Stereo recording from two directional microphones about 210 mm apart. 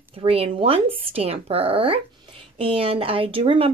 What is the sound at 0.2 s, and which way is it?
Speech, 25° right (ahead or behind).